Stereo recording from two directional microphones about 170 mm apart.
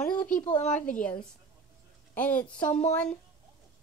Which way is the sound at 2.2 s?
10° left (ahead or behind).